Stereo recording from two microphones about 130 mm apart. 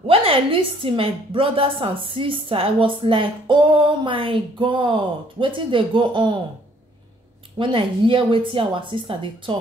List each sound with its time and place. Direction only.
0.0 s a woman's voice: 45° right (ahead or behind)
7.5 s a woman's voice: 40° right (ahead or behind)